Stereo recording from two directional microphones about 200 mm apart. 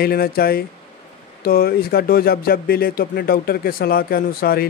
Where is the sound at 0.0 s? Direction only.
50° left (ahead or behind).